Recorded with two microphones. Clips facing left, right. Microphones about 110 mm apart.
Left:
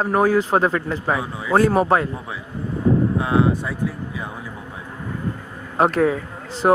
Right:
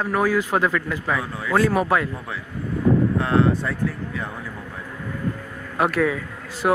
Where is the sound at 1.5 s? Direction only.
35° left (ahead or behind).